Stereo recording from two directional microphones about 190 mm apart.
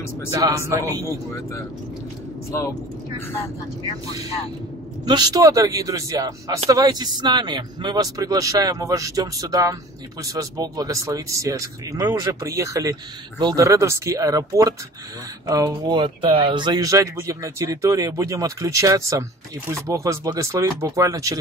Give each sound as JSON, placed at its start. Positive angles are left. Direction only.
{"t": 0.3, "sound": "speech", "side_deg": -15}
{"t": 1.0, "sound": "speech", "side_deg": 15}
{"t": 5.0, "sound": "speech", "side_deg": -20}